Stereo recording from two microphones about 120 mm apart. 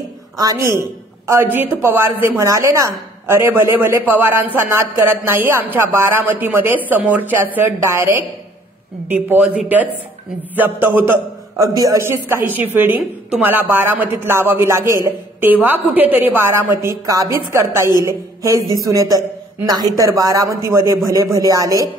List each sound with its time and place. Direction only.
0.4 s a woman's voice: 30° right (ahead or behind)
11.5 s a woman's voice: 30° right (ahead or behind)